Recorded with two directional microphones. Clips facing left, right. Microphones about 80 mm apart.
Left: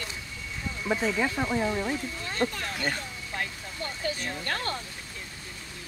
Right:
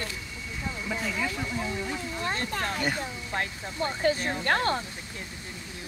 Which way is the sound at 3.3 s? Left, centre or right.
Right.